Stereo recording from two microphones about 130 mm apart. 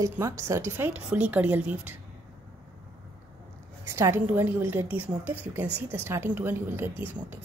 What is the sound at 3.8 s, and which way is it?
A woman's voice, 20° right (ahead or behind).